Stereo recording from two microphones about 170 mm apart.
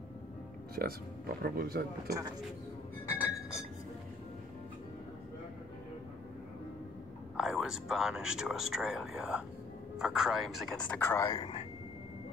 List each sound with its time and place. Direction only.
0.7 s speech: 60° right (ahead or behind)
3.1 s chink: 10° right (ahead or behind)
7.3 s speech: centre (ahead or behind)
11.0 s speech: 15° left (ahead or behind)